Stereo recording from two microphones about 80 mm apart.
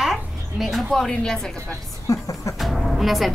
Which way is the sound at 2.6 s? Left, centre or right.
Centre.